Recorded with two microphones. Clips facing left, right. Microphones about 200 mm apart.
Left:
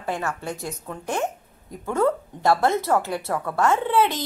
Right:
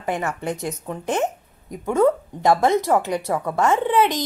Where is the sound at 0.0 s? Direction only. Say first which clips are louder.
Right 3 dB; 20° right (ahead or behind).